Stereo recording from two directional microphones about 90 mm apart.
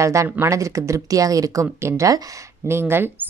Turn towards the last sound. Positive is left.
turn(degrees=-25)  # may be behind; listen again after turning